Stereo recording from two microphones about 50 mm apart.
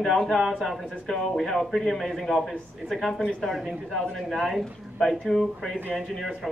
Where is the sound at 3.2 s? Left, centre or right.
Centre.